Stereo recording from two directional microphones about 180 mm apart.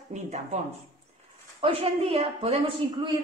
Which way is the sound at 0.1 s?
40° right (ahead or behind).